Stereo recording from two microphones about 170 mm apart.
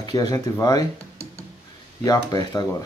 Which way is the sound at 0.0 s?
20° left (ahead or behind).